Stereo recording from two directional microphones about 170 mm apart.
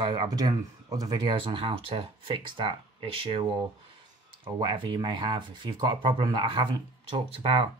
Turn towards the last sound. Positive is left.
turn(degrees=-35)  # may be behind; listen again after turning